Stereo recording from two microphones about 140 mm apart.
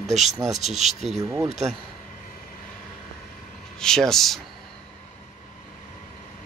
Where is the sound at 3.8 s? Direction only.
5° left (ahead or behind).